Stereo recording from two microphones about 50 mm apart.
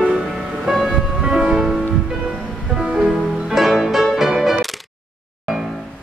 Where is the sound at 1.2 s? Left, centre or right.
Centre.